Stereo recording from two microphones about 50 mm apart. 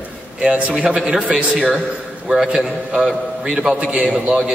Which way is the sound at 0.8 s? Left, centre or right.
Centre.